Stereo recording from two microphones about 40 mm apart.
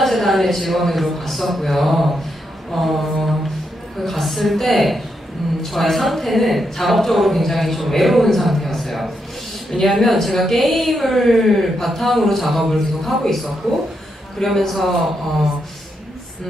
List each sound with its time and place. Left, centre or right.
0.0 s speech: centre
14.4 s speech: centre